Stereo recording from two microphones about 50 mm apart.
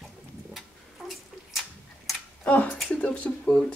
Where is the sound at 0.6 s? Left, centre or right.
Centre.